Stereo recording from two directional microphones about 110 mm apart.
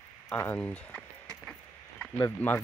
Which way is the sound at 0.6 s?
10° left (ahead or behind).